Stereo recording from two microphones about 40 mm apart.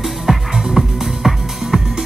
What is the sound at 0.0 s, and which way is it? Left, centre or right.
Music, centre.